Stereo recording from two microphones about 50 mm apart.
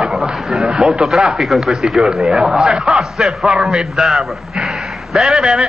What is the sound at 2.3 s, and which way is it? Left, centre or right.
A man's voice, right.